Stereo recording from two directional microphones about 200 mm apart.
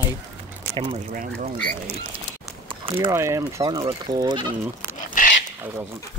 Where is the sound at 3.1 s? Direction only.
15° right (ahead or behind).